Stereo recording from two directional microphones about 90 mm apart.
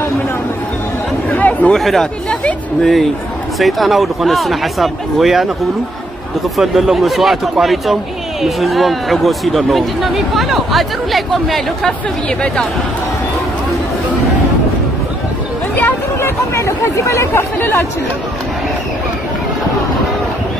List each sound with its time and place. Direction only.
1.3 s chatter: 20° left (ahead or behind)
1.7 s speech: centre (ahead or behind)
6.5 s speech: centre (ahead or behind)
15.7 s speech: 25° left (ahead or behind)